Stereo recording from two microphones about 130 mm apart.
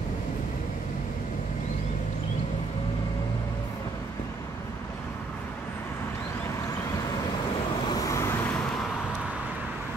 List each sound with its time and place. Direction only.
7.9 s vehicle: 25° left (ahead or behind)